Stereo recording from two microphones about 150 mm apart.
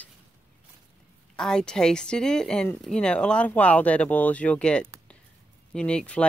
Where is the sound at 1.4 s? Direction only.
5° left (ahead or behind).